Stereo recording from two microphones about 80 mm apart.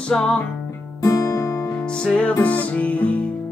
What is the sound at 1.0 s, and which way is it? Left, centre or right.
Music, left.